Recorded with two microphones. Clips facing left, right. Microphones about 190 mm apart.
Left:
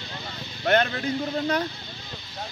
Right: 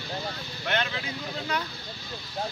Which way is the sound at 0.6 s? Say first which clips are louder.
Left 8 dB; 45° left (ahead or behind).